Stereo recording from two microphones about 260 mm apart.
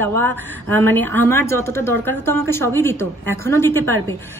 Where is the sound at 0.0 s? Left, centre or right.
Right.